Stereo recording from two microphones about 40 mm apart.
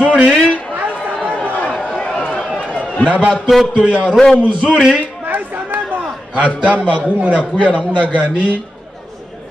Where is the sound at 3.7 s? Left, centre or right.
Right.